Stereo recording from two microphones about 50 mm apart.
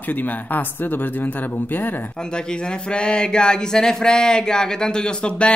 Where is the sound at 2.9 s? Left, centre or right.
Centre.